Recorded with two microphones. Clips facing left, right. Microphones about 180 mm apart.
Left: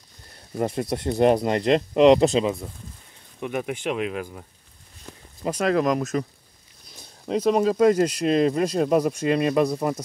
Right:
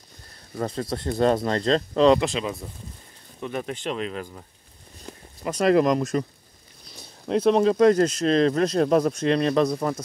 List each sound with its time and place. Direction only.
0.6 s speech: 20° left (ahead or behind)
2.1 s speech: 35° left (ahead or behind)
3.3 s speech: 10° left (ahead or behind)
5.6 s speech: centre (ahead or behind)
7.2 s speech: 5° left (ahead or behind)